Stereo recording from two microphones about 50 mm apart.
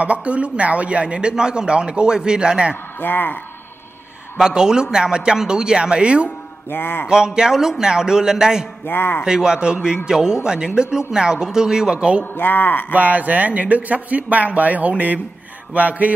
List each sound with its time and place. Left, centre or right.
0.0 s a man's voice: right
2.7 s a man's voice: left
4.4 s speech: centre
6.2 s a man's voice: left
7.1 s speech: centre
8.8 s a man's voice: left
9.2 s speech: centre
12.2 s speech: left
12.9 s speech: right